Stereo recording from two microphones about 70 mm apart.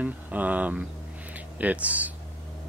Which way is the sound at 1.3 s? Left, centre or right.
Right.